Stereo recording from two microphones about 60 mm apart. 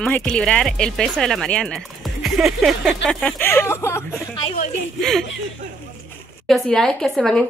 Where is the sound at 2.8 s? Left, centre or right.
Centre.